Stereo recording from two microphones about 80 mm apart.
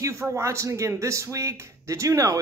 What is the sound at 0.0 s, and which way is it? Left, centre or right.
Speech, right.